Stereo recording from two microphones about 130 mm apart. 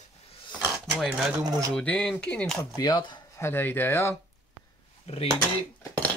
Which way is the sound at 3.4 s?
15° left (ahead or behind).